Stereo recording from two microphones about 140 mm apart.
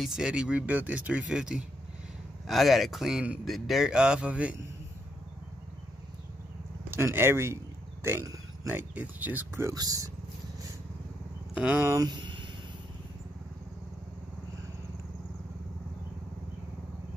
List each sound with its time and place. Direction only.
0.0 s speech: 5° right (ahead or behind)
6.9 s speech: 15° right (ahead or behind)
11.5 s speech: 10° right (ahead or behind)
12.0 s a sound: 30° right (ahead or behind)